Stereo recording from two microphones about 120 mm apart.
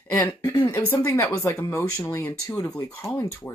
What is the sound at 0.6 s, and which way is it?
Speech, 20° left (ahead or behind).